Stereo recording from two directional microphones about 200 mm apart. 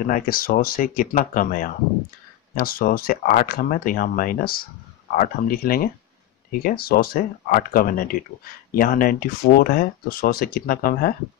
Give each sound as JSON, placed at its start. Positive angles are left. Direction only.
{"t": 0.0, "sound": "speech", "side_deg": 45}